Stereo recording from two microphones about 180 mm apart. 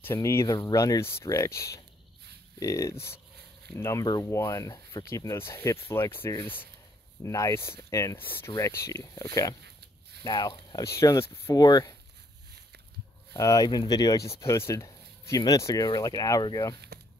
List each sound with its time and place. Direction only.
0.0 s speech: 15° left (ahead or behind)
9.6 s a sound: 65° right (ahead or behind)
10.2 s speech: 25° left (ahead or behind)
13.3 s speech: 20° left (ahead or behind)